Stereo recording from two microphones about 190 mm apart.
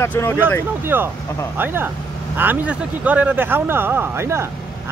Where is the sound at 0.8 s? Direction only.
10° right (ahead or behind).